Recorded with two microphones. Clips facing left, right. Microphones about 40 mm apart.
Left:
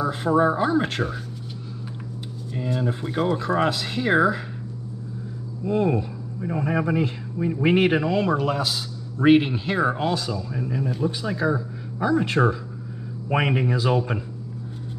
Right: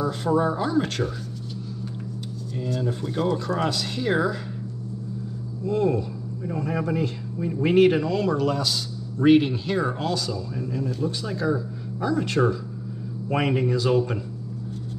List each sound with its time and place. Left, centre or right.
0.0 s speech: left
2.5 s speech: left
5.6 s speech: left